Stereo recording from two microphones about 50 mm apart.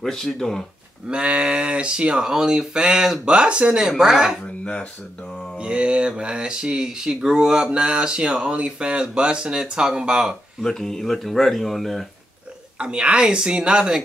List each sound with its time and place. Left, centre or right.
0.0 s speech: centre
1.0 s speech: right
5.6 s speech: centre
10.6 s speech: centre
12.7 s speech: centre